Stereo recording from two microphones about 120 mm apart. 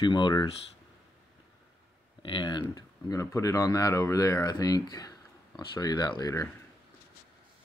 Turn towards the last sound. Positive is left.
turn(degrees=30)  # may be behind; listen again after turning